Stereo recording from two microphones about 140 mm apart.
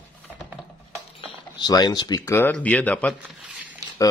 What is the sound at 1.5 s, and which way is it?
Speech, 30° left (ahead or behind).